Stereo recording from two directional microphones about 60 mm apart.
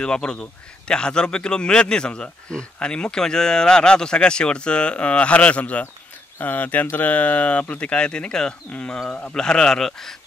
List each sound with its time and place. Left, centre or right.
0.0 s a man's voice: centre
9.4 s a man's voice: centre